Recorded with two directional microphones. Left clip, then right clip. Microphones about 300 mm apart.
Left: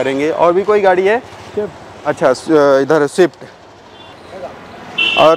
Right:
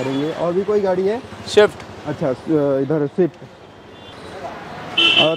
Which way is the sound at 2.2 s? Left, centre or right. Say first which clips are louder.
Left 8 dB; centre.